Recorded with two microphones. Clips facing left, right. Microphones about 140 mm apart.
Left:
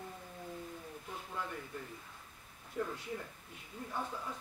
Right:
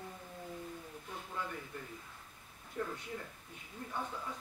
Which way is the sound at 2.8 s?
5° left (ahead or behind).